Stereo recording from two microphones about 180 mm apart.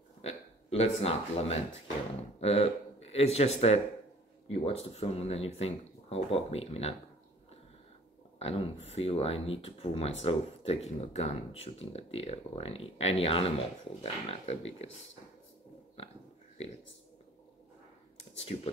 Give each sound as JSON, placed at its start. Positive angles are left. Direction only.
{"t": 0.2, "sound": "a man's voice", "side_deg": 35}
{"t": 8.4, "sound": "speech", "side_deg": 35}
{"t": 18.4, "sound": "speech", "side_deg": 35}